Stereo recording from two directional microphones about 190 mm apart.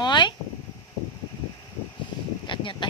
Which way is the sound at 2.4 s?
25° left (ahead or behind).